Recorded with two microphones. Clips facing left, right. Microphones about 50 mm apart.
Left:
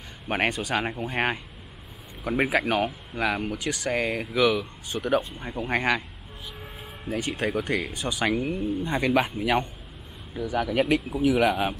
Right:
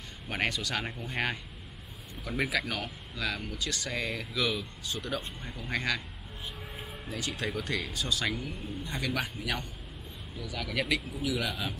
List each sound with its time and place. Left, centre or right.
0.3 s speech: left
7.4 s speech: left